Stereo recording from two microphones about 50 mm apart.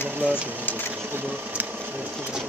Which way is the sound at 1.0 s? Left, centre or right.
Right.